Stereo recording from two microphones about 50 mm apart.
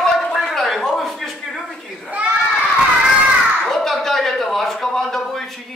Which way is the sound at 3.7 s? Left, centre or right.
Centre.